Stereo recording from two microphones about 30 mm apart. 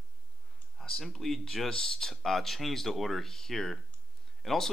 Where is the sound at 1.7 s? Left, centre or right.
Centre.